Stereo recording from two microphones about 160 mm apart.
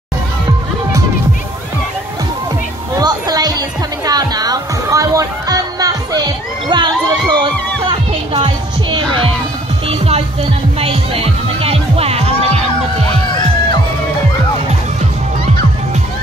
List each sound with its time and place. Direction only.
3.0 s music: 25° right (ahead or behind)